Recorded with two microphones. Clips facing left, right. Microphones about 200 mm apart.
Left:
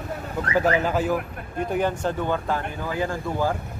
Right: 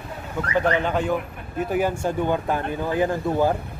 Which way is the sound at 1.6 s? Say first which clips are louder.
Right 1 dB; 5° right (ahead or behind).